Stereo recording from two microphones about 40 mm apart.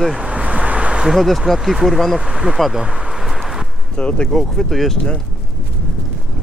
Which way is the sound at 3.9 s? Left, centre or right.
Left.